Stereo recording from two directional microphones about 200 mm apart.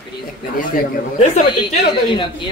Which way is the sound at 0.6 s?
40° left (ahead or behind).